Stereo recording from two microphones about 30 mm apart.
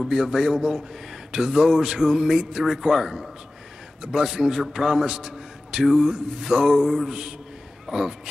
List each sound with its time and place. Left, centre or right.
0.0 s a man's voice: centre